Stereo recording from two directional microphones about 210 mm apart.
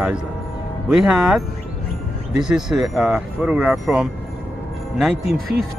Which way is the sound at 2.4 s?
Centre (ahead or behind).